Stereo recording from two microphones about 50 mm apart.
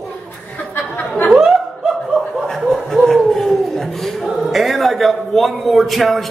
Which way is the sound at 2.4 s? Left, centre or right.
Centre.